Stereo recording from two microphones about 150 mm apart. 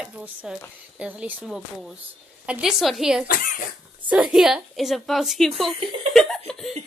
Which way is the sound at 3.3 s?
65° left (ahead or behind).